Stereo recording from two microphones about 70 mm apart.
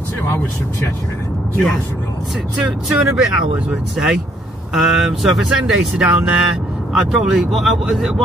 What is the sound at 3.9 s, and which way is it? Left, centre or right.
Speech, centre.